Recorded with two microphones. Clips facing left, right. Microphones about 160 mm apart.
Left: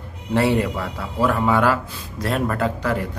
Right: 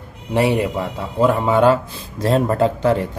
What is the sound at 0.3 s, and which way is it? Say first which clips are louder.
Speech: right 2 dB; 15° right (ahead or behind).